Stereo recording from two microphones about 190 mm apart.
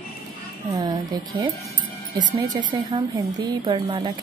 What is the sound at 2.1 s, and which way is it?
A woman's voice, 20° right (ahead or behind).